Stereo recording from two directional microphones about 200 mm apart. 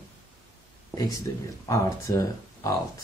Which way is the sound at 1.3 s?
15° left (ahead or behind).